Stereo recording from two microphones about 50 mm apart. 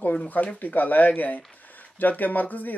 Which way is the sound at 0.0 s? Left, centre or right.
Left.